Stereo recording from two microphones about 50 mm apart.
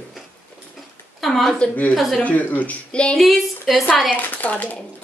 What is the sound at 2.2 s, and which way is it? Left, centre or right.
Speech, left.